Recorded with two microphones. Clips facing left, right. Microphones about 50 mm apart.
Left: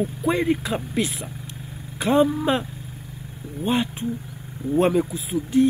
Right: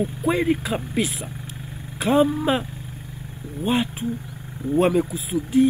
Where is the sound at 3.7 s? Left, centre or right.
Centre.